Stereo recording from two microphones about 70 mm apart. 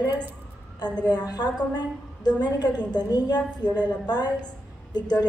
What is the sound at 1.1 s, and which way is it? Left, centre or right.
A woman's voice, left.